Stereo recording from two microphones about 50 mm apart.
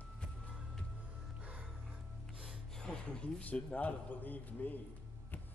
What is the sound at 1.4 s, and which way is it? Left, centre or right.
Music, right.